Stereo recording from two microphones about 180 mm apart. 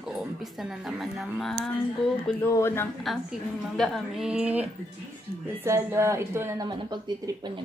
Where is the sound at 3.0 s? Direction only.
Centre (ahead or behind).